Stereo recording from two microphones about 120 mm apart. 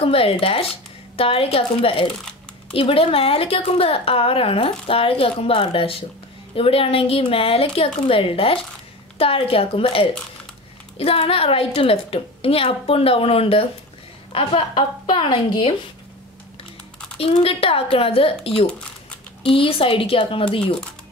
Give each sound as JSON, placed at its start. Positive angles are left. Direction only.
{"t": 0.0, "sound": "a woman's voice", "side_deg": 50}
{"t": 17.2, "sound": "a woman's voice", "side_deg": 55}